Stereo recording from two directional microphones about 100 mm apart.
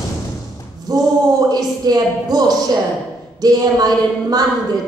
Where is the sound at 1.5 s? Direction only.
40° right (ahead or behind).